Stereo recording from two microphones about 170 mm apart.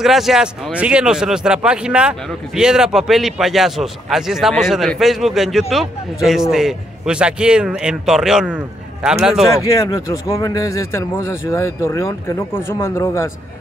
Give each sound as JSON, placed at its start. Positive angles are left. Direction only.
{"t": 0.0, "sound": "speech", "side_deg": 0}
{"t": 9.7, "sound": "speech", "side_deg": 20}